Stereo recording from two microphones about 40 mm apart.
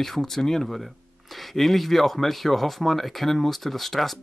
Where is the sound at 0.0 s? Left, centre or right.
Centre.